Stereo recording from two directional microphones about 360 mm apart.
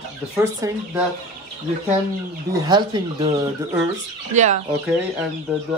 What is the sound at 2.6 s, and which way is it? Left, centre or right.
Speech, centre.